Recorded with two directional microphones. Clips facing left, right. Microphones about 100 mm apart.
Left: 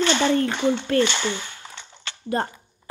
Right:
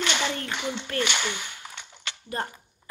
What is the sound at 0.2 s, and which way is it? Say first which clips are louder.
Speech: left 10 dB; 45° left (ahead or behind).